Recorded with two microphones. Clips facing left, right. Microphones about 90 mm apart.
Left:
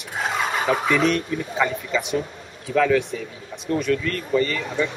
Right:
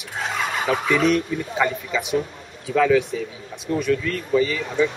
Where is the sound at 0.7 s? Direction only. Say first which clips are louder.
Right 1 dB; centre (ahead or behind).